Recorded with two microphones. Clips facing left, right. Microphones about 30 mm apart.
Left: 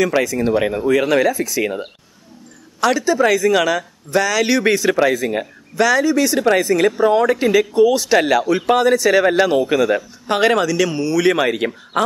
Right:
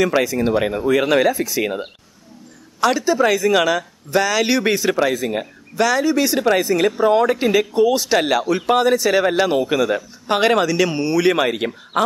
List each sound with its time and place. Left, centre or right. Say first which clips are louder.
0.2 s speech: left 1 dB; centre
0.6 s speech: left 2 dB; centre
10.7 s speech: even; right
11.1 s speech: left 1 dB; centre